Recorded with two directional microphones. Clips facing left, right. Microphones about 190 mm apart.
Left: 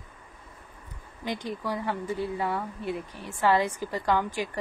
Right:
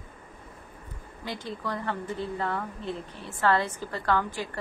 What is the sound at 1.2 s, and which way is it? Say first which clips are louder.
A woman's voice: left 3 dB; 15° left (ahead or behind).